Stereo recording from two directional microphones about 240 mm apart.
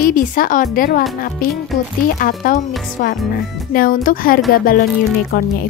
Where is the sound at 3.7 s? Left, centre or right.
Left.